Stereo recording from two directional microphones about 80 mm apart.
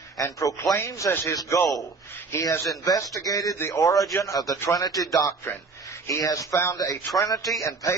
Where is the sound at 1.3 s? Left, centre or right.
Left.